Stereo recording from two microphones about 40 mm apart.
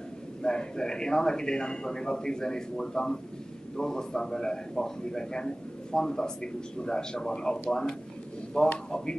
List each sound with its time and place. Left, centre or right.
0.4 s a man's voice: centre